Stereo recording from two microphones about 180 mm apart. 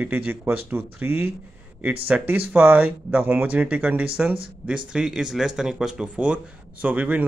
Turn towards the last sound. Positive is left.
turn(degrees=-10)  # may be behind; listen again after turning